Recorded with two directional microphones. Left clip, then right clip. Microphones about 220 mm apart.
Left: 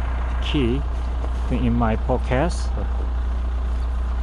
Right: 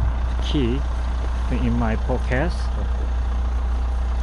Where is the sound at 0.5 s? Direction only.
5° left (ahead or behind).